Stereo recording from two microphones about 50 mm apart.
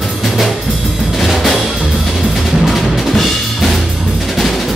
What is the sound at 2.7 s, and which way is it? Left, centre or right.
Music, centre.